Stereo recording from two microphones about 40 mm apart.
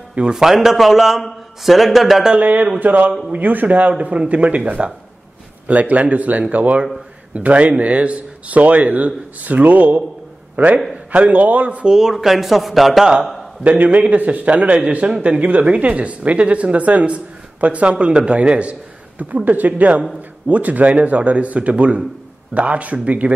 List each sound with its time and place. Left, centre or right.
0.3 s a man's voice: centre
2.4 s a man's voice: right
11.8 s a man's voice: centre
13.2 s a sound: centre
13.7 s speech: right